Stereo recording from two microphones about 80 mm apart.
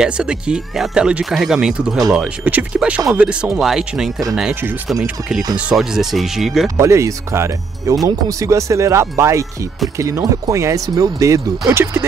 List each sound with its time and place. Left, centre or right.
0.0 s speech: centre
3.5 s speech: centre
5.8 s speech: centre
6.8 s speech: right
11.7 s speech: right